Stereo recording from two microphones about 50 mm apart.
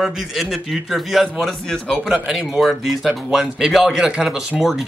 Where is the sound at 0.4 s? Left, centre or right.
Centre.